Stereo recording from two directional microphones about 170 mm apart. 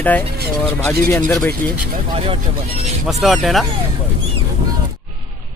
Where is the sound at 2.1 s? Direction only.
30° right (ahead or behind).